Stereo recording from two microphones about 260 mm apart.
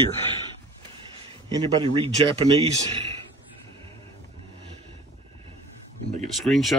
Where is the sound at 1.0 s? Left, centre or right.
Centre.